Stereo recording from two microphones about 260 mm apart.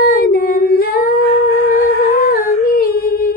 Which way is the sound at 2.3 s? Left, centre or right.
Left.